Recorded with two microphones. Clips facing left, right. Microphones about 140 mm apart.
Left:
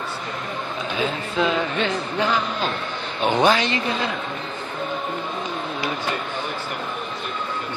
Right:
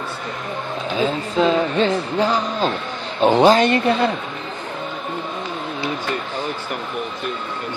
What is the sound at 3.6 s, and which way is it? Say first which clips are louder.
Speech: right 7 dB; 55° right (ahead or behind).